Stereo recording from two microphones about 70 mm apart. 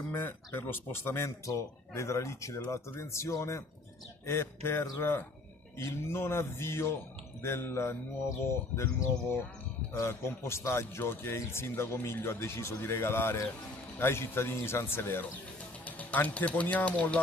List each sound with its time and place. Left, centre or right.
0.1 s a man's voice: left
9.9 s a man's voice: left
16.0 s speech: left